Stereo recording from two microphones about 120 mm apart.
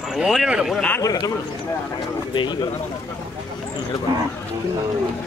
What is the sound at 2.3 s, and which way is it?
Speech, 40° left (ahead or behind).